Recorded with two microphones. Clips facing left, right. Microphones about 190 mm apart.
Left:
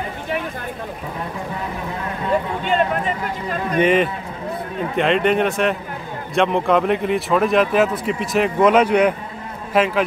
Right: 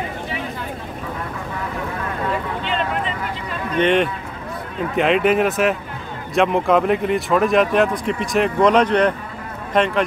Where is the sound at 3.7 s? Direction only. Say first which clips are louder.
Even; 5° left (ahead or behind).